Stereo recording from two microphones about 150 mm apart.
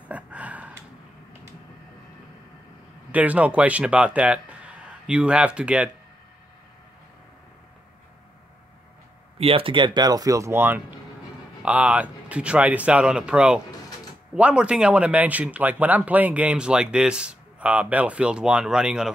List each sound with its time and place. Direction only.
0.1 s a sound: 10° right (ahead or behind)
3.1 s speech: 10° right (ahead or behind)
9.4 s speech: 40° right (ahead or behind); by 19.1 s 5° right (ahead or behind)